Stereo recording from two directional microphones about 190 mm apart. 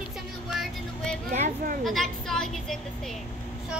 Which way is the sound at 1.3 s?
45° right (ahead or behind).